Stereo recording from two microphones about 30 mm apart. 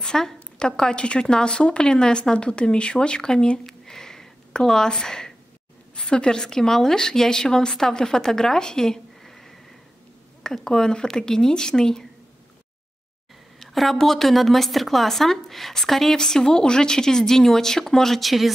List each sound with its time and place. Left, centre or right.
0.0 s a sound: left
0.9 s speech: left
3.2 s speech: left
3.8 s a sound: centre
5.9 s speech: left
13.9 s speech: centre
16.2 s speech: centre
18.2 s speech: centre